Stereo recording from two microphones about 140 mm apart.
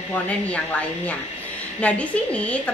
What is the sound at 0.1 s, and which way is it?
A woman's voice, 10° left (ahead or behind).